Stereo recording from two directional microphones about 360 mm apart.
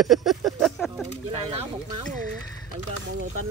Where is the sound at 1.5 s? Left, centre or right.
Centre.